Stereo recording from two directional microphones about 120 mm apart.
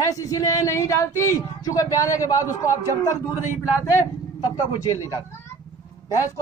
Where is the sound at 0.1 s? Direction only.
25° left (ahead or behind).